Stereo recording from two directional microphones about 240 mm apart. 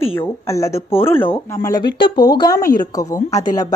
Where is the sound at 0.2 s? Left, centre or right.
Centre.